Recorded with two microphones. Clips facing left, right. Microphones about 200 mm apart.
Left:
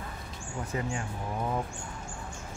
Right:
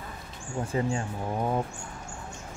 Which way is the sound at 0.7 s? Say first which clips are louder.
Right 5 dB; 30° right (ahead or behind).